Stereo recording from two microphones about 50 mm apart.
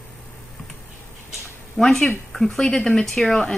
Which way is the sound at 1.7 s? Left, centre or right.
Centre.